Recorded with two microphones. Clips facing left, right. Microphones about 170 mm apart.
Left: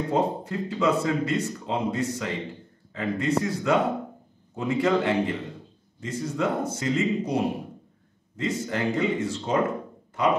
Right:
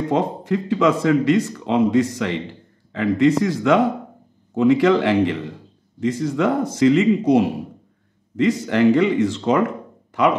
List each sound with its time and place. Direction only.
0.1 s speech: 90° right